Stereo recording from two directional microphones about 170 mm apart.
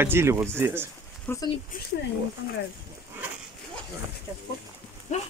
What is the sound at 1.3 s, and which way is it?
Speech, 10° left (ahead or behind).